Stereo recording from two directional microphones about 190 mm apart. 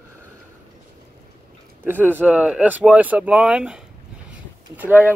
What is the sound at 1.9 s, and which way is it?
Speech, 10° right (ahead or behind).